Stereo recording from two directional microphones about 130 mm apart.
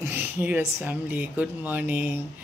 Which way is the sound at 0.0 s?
15° right (ahead or behind).